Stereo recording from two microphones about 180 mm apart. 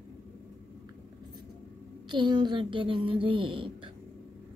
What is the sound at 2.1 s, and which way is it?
Speech, 25° right (ahead or behind).